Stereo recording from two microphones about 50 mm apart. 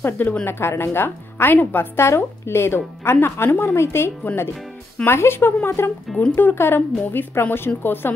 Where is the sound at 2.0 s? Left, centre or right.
Left.